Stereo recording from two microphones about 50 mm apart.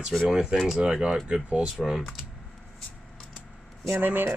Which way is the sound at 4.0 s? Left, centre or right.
Right.